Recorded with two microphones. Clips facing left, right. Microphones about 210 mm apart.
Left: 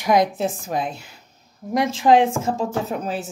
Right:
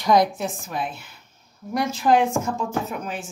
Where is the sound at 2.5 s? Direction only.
30° left (ahead or behind).